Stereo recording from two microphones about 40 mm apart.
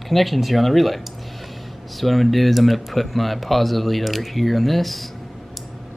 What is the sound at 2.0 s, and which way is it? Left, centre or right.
Speech, centre.